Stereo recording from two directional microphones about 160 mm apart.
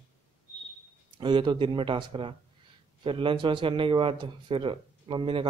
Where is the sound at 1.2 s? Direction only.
30° right (ahead or behind).